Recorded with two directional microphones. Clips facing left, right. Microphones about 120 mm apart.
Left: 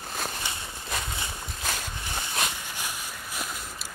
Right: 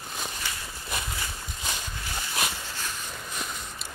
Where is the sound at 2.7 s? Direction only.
10° left (ahead or behind).